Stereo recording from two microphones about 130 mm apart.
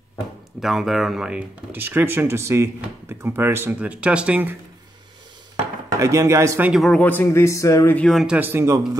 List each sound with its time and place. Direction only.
0.6 s speech: centre (ahead or behind)
5.9 s speech: 25° right (ahead or behind)
6.7 s speech: centre (ahead or behind)
7.0 s a man's voice: 15° left (ahead or behind)
7.9 s speech: 5° left (ahead or behind)
8.4 s speech: 15° right (ahead or behind)